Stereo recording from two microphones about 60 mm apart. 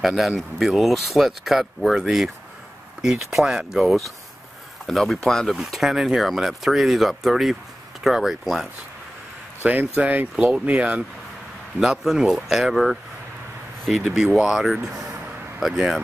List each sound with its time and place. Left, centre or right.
0.0 s speech: centre
9.6 s speech: right
10.3 s speech: centre
11.8 s speech: centre